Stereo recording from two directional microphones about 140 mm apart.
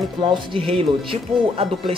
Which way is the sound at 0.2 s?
35° right (ahead or behind).